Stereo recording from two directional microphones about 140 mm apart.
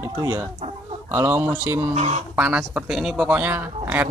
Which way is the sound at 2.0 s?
50° right (ahead or behind).